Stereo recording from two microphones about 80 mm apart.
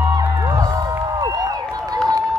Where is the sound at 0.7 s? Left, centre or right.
Right.